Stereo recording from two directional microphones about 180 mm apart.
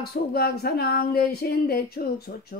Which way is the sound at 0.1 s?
60° left (ahead or behind).